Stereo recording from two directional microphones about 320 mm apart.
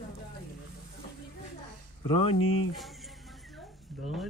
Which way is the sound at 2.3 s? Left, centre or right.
Left.